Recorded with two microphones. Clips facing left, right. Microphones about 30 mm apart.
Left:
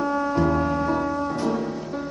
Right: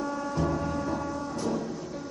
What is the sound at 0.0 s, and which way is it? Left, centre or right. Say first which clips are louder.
Music: left 8 dB; left.